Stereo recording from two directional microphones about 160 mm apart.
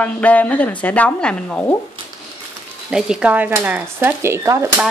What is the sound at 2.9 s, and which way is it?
Speech, 5° right (ahead or behind).